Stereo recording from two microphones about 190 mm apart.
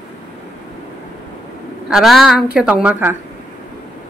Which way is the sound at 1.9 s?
Centre (ahead or behind).